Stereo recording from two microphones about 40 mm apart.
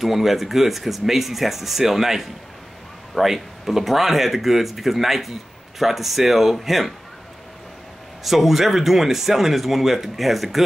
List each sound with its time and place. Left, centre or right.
0.0 s speech: centre
8.2 s speech: centre